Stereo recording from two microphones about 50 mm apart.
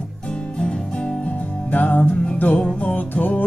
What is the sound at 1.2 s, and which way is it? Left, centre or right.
Music, left.